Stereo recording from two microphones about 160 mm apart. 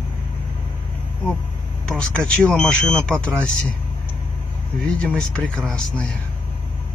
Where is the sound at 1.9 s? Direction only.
5° left (ahead or behind).